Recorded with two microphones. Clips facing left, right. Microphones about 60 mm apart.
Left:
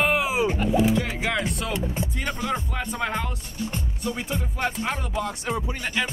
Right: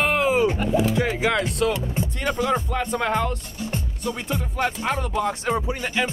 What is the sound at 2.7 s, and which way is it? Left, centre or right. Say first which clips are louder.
Speech: right 5 dB; centre.